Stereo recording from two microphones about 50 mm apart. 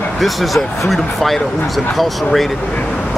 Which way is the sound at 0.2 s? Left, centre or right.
Centre.